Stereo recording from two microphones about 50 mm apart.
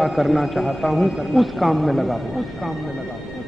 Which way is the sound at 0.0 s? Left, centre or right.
Centre.